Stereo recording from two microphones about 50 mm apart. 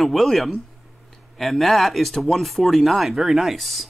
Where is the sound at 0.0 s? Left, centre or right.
Centre.